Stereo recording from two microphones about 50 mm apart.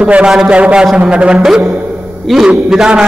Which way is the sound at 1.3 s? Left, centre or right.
Centre.